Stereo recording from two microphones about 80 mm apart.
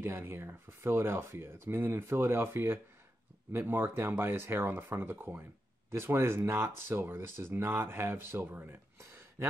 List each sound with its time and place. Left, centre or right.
0.0 s speech: right